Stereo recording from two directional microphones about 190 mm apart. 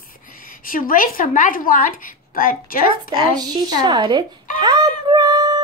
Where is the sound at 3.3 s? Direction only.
20° right (ahead or behind).